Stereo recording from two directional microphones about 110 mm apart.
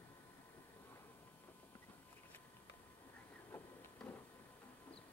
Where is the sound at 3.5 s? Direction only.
15° left (ahead or behind).